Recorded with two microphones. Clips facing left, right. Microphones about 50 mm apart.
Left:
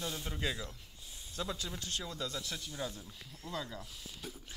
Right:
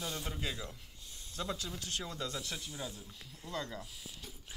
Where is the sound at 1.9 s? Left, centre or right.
Centre.